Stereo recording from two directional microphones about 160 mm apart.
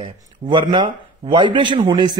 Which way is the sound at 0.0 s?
30° right (ahead or behind).